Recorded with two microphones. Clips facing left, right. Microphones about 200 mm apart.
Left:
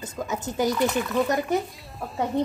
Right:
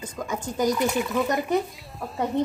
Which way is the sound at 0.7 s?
10° right (ahead or behind).